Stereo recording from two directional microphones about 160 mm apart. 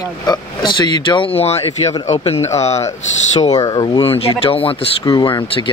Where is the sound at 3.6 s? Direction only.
30° left (ahead or behind).